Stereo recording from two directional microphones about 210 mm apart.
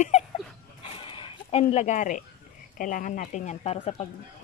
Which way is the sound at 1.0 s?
25° left (ahead or behind).